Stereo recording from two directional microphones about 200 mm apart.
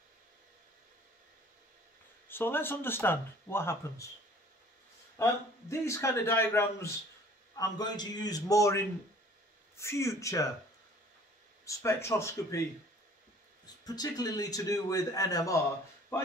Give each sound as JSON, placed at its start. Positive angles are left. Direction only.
{"t": 2.2, "sound": "a man's voice", "side_deg": 10}
{"t": 5.1, "sound": "a man's voice", "side_deg": 15}
{"t": 11.6, "sound": "a man's voice", "side_deg": 15}
{"t": 13.8, "sound": "a man's voice", "side_deg": 20}